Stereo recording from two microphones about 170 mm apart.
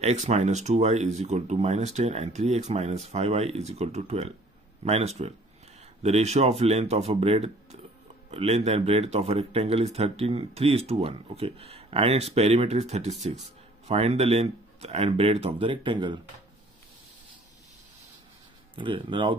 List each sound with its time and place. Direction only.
0.0 s speech: 40° right (ahead or behind)
18.8 s speech: 30° right (ahead or behind)